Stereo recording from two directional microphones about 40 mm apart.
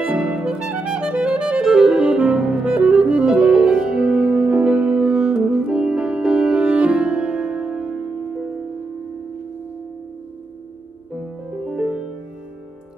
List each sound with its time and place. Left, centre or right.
0.0 s music: centre
1.6 s music: centre
11.1 s music: centre